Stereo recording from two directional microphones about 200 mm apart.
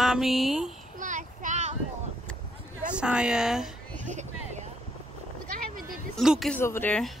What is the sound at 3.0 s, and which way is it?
Speech, 5° right (ahead or behind).